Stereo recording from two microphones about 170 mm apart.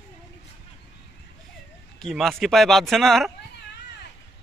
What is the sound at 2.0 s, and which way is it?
Speech, centre (ahead or behind).